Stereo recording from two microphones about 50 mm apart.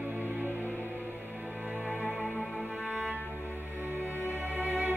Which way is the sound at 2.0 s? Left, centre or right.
Centre.